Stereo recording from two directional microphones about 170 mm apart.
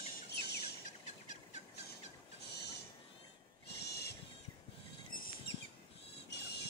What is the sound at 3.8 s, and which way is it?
Owl, 75° left (ahead or behind).